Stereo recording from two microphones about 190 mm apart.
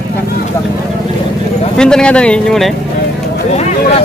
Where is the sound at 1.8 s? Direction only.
5° left (ahead or behind).